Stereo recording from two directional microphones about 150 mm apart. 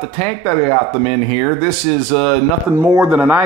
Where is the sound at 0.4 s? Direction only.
5° left (ahead or behind).